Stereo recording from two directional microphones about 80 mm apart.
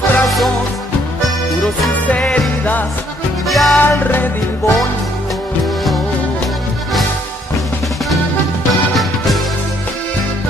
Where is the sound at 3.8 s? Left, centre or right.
Left.